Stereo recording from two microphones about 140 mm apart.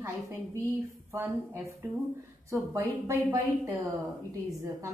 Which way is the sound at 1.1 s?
20° right (ahead or behind).